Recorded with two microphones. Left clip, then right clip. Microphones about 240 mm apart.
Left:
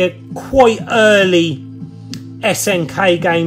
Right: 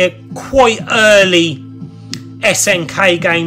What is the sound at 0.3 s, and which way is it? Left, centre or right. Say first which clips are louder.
Speech: left 1 dB; right.